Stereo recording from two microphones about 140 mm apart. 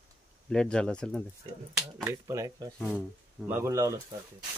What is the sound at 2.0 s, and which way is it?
Speech, 20° right (ahead or behind).